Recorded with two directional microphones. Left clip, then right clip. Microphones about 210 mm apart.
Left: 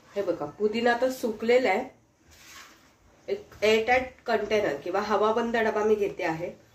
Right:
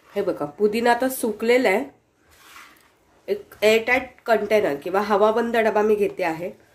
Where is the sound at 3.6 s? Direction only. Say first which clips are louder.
Right 4 dB; 55° right (ahead or behind).